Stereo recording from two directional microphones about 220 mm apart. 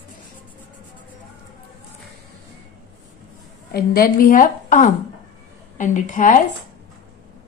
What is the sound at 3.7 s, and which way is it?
Speech, 40° left (ahead or behind).